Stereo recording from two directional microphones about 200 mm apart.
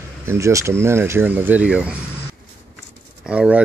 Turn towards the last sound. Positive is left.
turn(degrees=-5)  # may be behind; listen again after turning